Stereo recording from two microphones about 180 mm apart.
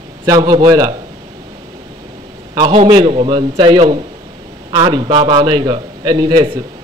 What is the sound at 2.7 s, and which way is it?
A man's voice, 30° right (ahead or behind).